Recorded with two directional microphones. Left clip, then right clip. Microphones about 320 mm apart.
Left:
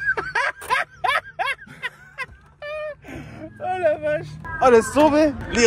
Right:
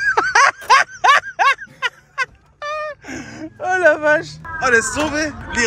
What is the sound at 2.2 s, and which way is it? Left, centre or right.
Music, right.